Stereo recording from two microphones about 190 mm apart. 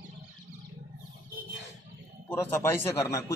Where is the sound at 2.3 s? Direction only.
10° left (ahead or behind).